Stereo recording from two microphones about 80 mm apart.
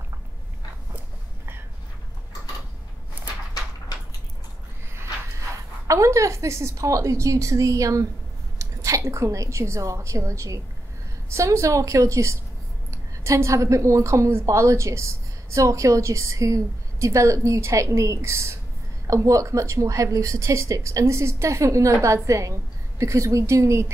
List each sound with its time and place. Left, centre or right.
5.9 s a woman's voice: right